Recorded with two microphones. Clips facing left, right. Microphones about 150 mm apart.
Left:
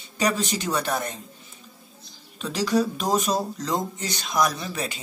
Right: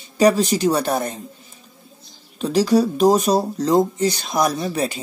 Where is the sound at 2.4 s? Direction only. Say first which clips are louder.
Right 7 dB; 35° right (ahead or behind).